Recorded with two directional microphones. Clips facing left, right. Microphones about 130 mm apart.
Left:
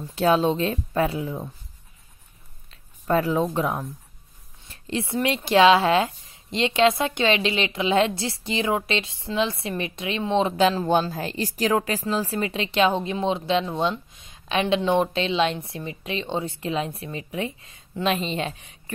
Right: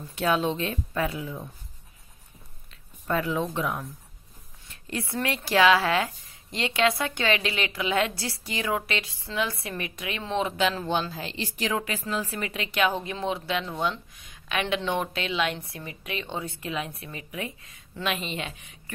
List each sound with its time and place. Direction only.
0.1 s speech: 35° left (ahead or behind)
2.7 s speech: 35° left (ahead or behind)
4.6 s speech: 25° left (ahead or behind)